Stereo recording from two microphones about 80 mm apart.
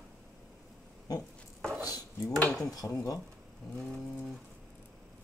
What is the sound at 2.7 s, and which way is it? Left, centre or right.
Speech, left.